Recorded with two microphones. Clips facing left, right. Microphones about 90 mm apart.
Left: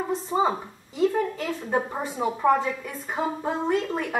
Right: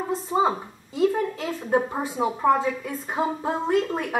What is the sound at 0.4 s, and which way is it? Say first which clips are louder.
A woman's voice: right 2 dB; 5° right (ahead or behind).